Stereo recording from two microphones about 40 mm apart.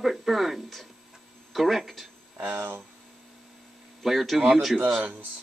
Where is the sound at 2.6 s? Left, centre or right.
Right.